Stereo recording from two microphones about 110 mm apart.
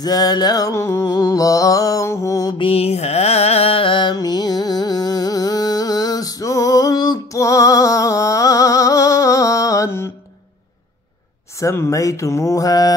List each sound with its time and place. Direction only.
0.0 s mantra: 35° left (ahead or behind)
2.5 s mantra: 60° left (ahead or behind); by 10.1 s 25° left (ahead or behind)
11.5 s speech: 25° left (ahead or behind)